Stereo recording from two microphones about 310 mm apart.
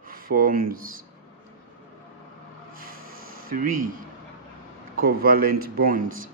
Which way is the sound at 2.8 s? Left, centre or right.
Right.